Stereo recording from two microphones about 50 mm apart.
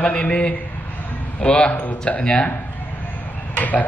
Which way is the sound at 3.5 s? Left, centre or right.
Left.